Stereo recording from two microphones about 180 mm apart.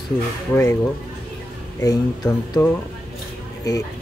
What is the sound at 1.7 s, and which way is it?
Speech, 20° left (ahead or behind).